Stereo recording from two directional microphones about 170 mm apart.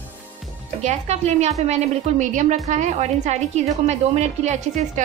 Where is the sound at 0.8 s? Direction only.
40° right (ahead or behind).